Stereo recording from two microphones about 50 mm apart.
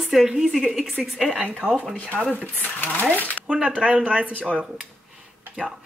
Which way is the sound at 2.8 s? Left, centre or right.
Left.